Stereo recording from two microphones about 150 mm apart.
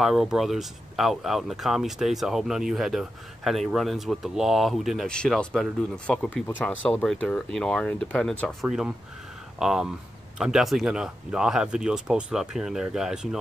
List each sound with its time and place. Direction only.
0.0 s speech: centre (ahead or behind)